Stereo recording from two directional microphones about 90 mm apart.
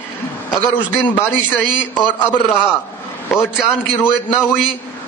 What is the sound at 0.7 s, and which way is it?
Speech, 20° left (ahead or behind).